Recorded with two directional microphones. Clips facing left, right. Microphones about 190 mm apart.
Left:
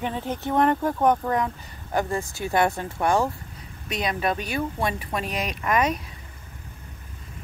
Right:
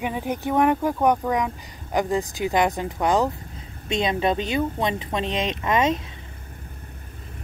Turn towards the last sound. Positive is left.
turn(degrees=-25)  # may be behind; listen again after turning